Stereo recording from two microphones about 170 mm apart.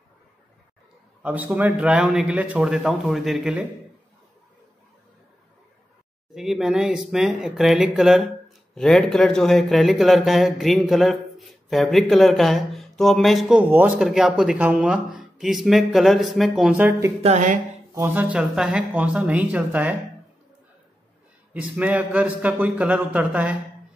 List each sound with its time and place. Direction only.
1.2 s speech: 10° right (ahead or behind)
6.3 s speech: centre (ahead or behind)
17.2 s a sound: 45° right (ahead or behind)
17.9 s speech: 10° right (ahead or behind)
21.5 s speech: 10° right (ahead or behind)